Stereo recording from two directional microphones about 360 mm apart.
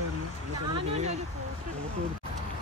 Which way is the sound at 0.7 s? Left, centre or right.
Centre.